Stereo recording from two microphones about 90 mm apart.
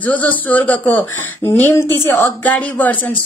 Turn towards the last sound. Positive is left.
turn(degrees=20)  # may be behind; listen again after turning